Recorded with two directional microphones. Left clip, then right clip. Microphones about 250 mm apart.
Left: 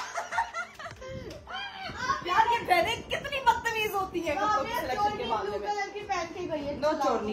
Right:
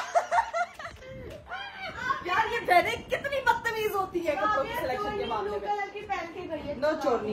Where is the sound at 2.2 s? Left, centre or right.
Centre.